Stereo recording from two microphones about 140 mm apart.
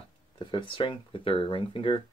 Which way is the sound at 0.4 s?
35° left (ahead or behind).